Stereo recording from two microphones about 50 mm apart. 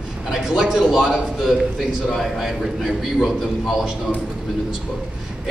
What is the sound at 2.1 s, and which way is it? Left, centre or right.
Speech, centre.